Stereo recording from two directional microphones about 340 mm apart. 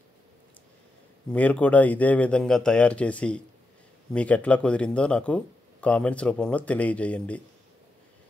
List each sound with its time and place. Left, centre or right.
1.3 s speech: centre